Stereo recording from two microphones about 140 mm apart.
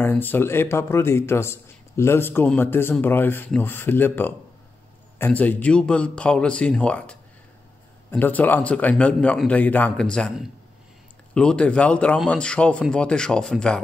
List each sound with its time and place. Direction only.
0.0 s speech: 15° left (ahead or behind)
11.3 s speech: 10° left (ahead or behind)